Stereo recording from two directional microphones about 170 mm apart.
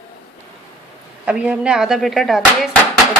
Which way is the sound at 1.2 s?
5° right (ahead or behind).